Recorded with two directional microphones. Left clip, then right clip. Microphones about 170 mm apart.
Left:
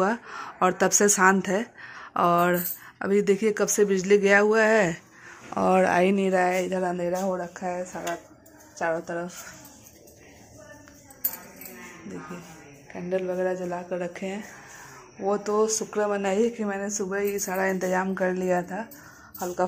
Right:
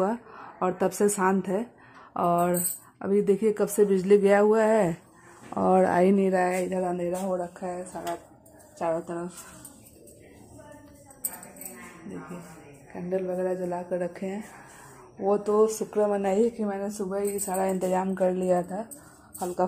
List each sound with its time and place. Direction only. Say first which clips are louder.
0.0 s speech: left 3 dB; centre (ahead or behind)
6.7 s speech: left 2 dB; 5° left (ahead or behind)
12.9 s speech: left 2 dB; centre (ahead or behind)
17.0 s speech: left 2 dB; centre (ahead or behind)
18.4 s speech: even; 10° right (ahead or behind)
19.3 s speech: even; 10° left (ahead or behind)